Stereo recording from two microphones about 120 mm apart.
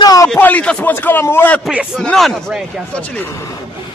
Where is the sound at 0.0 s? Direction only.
30° left (ahead or behind).